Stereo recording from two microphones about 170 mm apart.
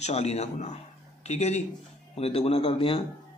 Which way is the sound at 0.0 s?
40° left (ahead or behind).